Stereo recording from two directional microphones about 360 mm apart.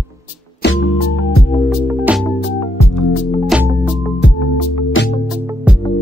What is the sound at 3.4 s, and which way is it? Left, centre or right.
Music, centre.